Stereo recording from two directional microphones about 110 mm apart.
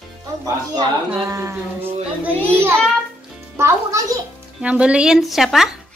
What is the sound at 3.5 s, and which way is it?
Speech, 25° right (ahead or behind).